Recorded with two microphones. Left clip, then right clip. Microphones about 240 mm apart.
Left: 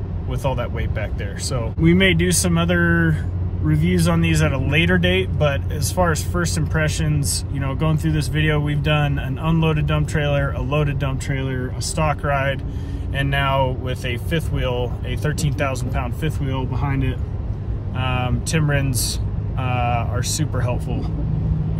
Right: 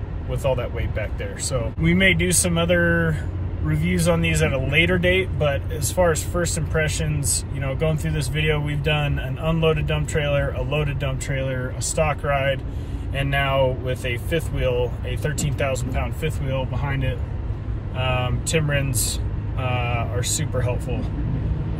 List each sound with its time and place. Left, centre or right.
0.3 s speech: centre
17.9 s speech: centre